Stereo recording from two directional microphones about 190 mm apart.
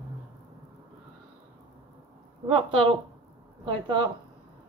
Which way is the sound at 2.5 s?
30° right (ahead or behind).